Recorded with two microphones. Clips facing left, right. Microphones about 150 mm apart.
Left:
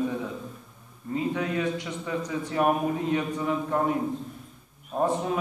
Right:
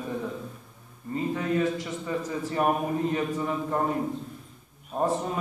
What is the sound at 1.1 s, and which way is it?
A man's voice, centre (ahead or behind).